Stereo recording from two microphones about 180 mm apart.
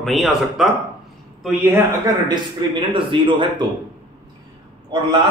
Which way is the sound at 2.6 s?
25° right (ahead or behind).